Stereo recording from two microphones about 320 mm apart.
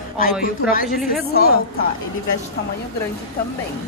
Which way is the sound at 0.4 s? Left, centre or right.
Left.